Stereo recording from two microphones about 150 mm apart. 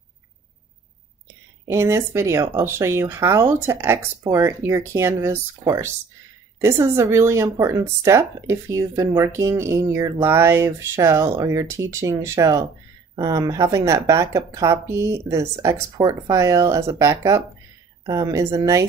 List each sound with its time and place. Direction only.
1.7 s a woman's voice: 15° right (ahead or behind)